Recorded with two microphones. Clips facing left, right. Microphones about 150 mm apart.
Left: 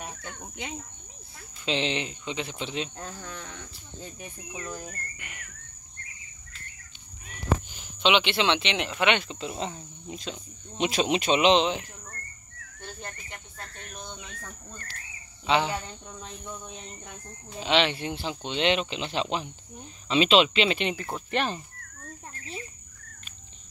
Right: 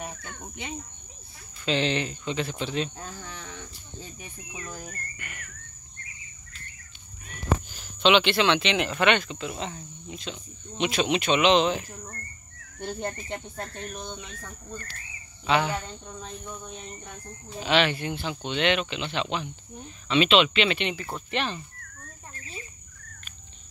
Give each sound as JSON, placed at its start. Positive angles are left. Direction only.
{"t": 1.6, "sound": "speech", "side_deg": 20}
{"t": 5.2, "sound": "speech", "side_deg": 15}
{"t": 7.2, "sound": "a sound", "side_deg": 15}
{"t": 8.7, "sound": "speech", "side_deg": 0}
{"t": 9.3, "sound": "speech", "side_deg": 30}
{"t": 12.8, "sound": "cricket", "side_deg": -25}
{"t": 15.4, "sound": "speech", "side_deg": 25}
{"t": 17.6, "sound": "speech", "side_deg": 25}